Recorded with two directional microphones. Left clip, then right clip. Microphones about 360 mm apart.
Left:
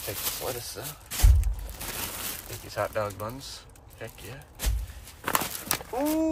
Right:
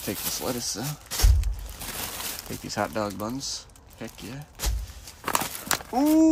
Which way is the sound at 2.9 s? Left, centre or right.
Centre.